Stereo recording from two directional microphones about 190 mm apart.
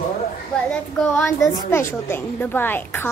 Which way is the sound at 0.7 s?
10° left (ahead or behind).